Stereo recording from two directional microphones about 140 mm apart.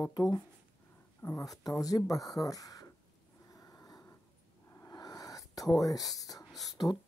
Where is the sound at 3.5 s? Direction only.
25° left (ahead or behind).